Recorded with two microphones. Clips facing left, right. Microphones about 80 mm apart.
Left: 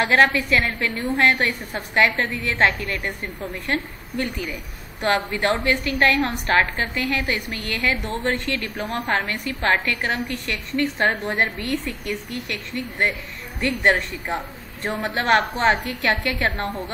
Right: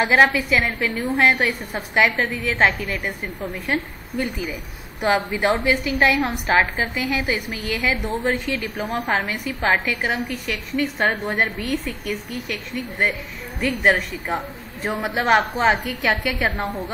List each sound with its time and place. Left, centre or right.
0.0 s a woman's voice: centre
4.2 s a woman's voice: centre